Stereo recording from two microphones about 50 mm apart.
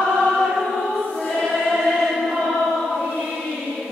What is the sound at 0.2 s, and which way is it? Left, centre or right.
Choir, centre.